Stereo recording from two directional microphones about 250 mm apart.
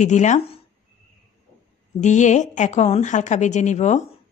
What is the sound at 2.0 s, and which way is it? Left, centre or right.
A woman's voice, left.